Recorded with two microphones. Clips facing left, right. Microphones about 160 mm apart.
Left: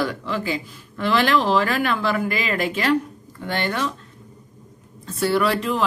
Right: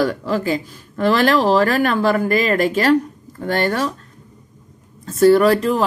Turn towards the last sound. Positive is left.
turn(degrees=-40)  # may be behind; listen again after turning